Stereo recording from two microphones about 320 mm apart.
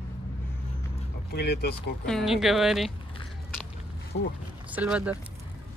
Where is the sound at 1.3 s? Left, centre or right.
Left.